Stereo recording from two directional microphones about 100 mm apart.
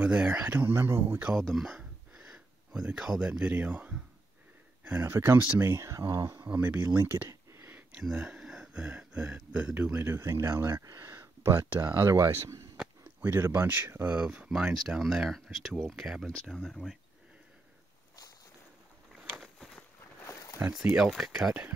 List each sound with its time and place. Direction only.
0.0 s speech: 10° right (ahead or behind)
1.4 s speech: centre (ahead or behind); by 6.3 s 35° right (ahead or behind)
6.3 s speech: 20° right (ahead or behind)
7.2 s a sound: 25° right (ahead or behind)
7.9 s speech: 10° right (ahead or behind)
9.9 s speech: 25° right (ahead or behind)
14.1 s speech: 10° right (ahead or behind); by 16.9 s 5° left (ahead or behind)
19.1 s walk: centre (ahead or behind)
20.2 s a sound: 35° left (ahead or behind)
20.7 s speech: 5° right (ahead or behind)